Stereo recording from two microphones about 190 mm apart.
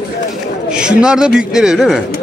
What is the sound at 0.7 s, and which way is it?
Speech, 5° right (ahead or behind).